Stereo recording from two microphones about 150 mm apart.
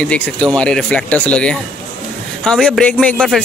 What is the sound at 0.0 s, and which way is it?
A man's voice, 5° left (ahead or behind).